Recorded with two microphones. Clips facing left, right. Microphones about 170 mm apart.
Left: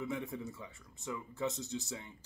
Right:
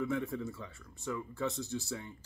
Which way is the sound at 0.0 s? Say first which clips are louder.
Right 5 dB; 20° left (ahead or behind).